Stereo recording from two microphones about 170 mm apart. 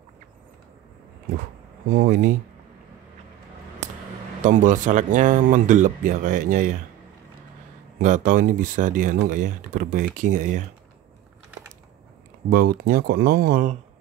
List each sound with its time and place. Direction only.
1.9 s speech: 60° right (ahead or behind)
4.4 s speech: 50° right (ahead or behind)
8.0 s speech: 50° right (ahead or behind)
12.4 s speech: 55° right (ahead or behind)